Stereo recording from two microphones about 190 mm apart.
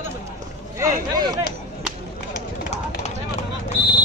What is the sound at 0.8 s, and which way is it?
Speech, 20° right (ahead or behind).